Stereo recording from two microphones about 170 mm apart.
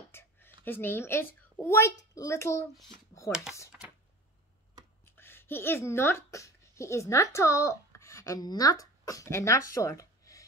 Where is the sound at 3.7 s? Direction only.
5° right (ahead or behind).